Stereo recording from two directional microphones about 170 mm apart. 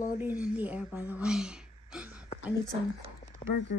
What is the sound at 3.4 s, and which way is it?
Speech, 35° left (ahead or behind).